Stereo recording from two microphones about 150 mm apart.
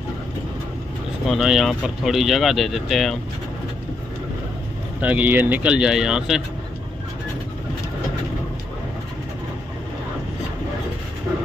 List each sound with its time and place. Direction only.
1.2 s speech: centre (ahead or behind)
5.0 s speech: 10° right (ahead or behind)